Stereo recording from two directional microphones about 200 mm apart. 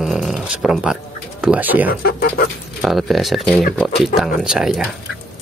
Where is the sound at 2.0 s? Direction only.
50° left (ahead or behind).